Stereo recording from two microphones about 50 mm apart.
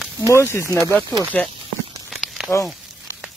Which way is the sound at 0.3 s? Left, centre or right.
Left.